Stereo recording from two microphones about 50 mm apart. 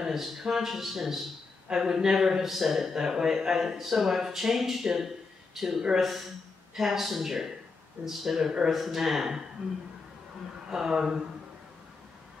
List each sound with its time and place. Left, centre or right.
0.0 s speech: centre
9.6 s speech: centre